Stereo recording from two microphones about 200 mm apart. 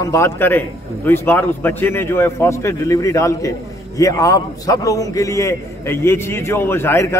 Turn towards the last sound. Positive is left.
turn(degrees=15)  # may be behind; listen again after turning